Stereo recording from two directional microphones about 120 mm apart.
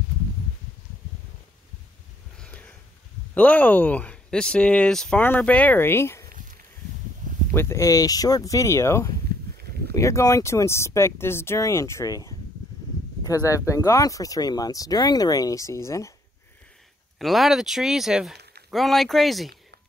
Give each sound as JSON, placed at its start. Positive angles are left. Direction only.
{"t": 2.3, "sound": "a sound", "side_deg": 10}
{"t": 3.3, "sound": "speech", "side_deg": 15}
{"t": 7.5, "sound": "speech", "side_deg": 25}
{"t": 13.5, "sound": "speech", "side_deg": 25}
{"t": 17.2, "sound": "speech", "side_deg": 0}